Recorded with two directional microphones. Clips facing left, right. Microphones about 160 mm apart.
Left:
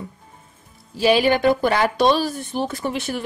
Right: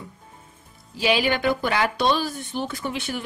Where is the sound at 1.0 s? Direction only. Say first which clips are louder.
Left 5 dB; 40° left (ahead or behind).